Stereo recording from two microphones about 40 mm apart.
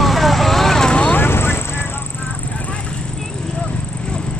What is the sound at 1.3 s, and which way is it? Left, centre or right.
Vehicle, left.